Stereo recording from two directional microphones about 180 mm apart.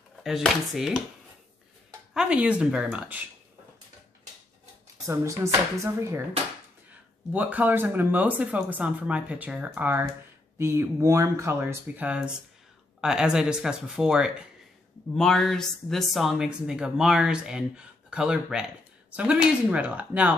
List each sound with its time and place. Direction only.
0.2 s speech: centre (ahead or behind)
2.1 s speech: 5° right (ahead or behind)
5.0 s speech: 15° right (ahead or behind)
6.9 s speech: 10° right (ahead or behind)